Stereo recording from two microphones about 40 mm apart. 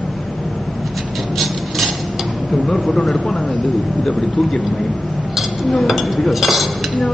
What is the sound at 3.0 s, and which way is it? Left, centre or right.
Speech, centre.